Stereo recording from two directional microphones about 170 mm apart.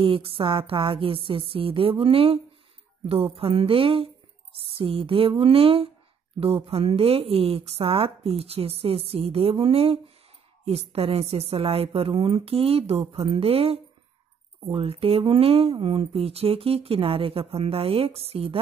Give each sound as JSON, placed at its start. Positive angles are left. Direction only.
{"t": 0.0, "sound": "speech", "side_deg": -30}